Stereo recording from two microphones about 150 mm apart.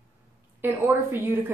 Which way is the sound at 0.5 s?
15° right (ahead or behind).